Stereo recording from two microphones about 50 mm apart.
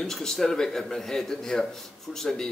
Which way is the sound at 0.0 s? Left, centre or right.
Centre.